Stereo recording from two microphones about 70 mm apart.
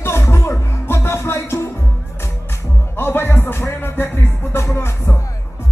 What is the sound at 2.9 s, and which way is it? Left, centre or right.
Music, left.